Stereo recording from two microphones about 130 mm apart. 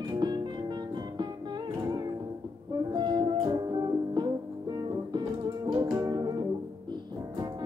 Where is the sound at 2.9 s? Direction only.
35° right (ahead or behind).